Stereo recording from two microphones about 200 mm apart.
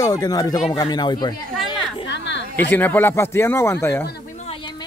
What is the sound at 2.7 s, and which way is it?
Speech, 10° left (ahead or behind).